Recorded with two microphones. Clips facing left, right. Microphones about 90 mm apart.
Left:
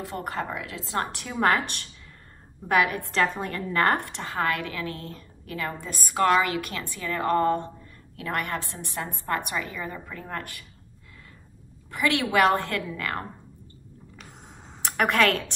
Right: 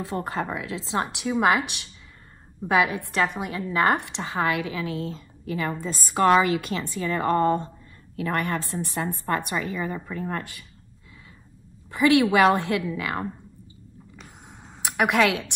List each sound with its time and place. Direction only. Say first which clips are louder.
0.0 s a woman's voice: right 3 dB; 25° right (ahead or behind)
2.7 s a woman's voice: right 1 dB; 20° right (ahead or behind)
3.1 s a woman's voice: even; 10° right (ahead or behind); by 8.5 s 30° right (ahead or behind)
9.7 s a woman's voice: right 5 dB; 25° right (ahead or behind)
11.9 s a woman's voice: right 6 dB; 25° right (ahead or behind)
14.8 s a woman's voice: right 1 dB; 10° right (ahead or behind)